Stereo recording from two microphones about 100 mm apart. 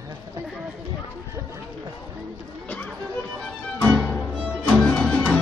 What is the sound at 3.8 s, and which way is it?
Music, 10° left (ahead or behind).